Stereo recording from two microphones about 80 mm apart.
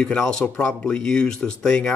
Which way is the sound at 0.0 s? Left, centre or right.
Centre.